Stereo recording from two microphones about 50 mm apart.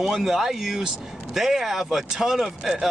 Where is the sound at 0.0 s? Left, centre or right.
Centre.